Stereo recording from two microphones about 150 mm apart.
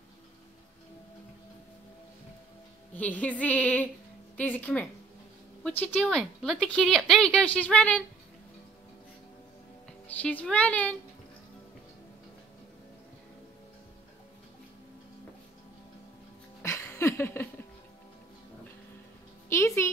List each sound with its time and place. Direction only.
2.9 s a woman's voice: 10° left (ahead or behind)
10.0 s a woman's voice: 10° left (ahead or behind)
16.6 s a sound: 15° left (ahead or behind)
19.5 s a woman's voice: 20° left (ahead or behind)